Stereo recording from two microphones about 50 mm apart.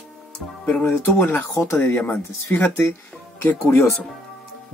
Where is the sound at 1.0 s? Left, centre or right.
Left.